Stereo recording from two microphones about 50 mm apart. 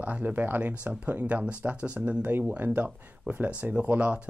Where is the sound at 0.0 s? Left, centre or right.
Right.